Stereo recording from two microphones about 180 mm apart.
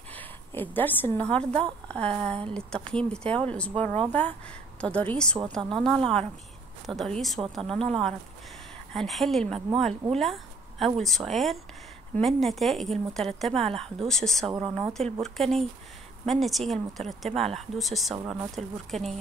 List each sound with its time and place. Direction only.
0.1 s a woman's voice: 10° left (ahead or behind)
8.9 s speech: centre (ahead or behind)
14.5 s a woman's voice: 20° right (ahead or behind)
15.2 s speech: centre (ahead or behind)
18.1 s speech: 20° right (ahead or behind)
18.5 s speech: centre (ahead or behind)